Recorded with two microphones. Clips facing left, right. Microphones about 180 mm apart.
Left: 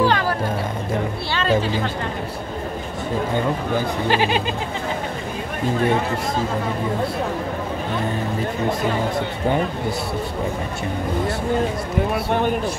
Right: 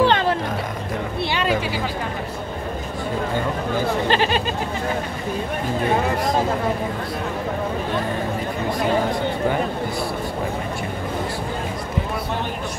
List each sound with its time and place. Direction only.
0.0 s vehicle: 25° right (ahead or behind)
1.3 s speech: 15° right (ahead or behind)
4.1 s speech: 15° left (ahead or behind)